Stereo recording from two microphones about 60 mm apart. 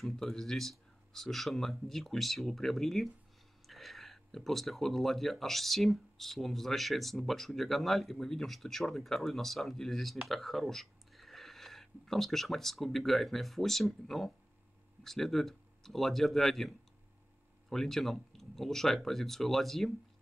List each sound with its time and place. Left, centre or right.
0.0 s speech: centre